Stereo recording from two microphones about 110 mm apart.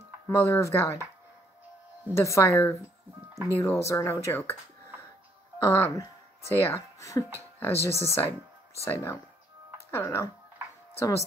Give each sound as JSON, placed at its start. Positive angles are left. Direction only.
{"t": 0.3, "sound": "speech", "side_deg": 25}
{"t": 2.1, "sound": "speech", "side_deg": 25}